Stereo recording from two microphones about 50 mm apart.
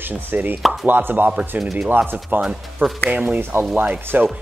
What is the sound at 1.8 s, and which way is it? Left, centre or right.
Speech, right.